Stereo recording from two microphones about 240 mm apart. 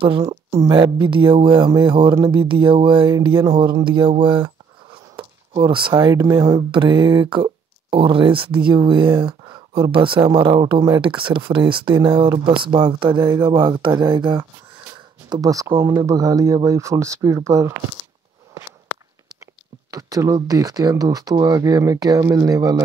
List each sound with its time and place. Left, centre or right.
0.0 s speech: centre
19.9 s speech: centre